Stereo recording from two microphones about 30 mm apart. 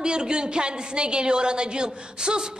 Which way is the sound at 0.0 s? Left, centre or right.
Right.